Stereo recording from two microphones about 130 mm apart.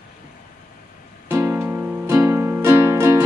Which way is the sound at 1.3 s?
20° right (ahead or behind).